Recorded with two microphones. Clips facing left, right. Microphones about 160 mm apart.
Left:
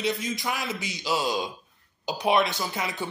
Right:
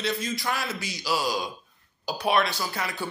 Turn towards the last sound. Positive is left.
turn(degrees=20)  # may be behind; listen again after turning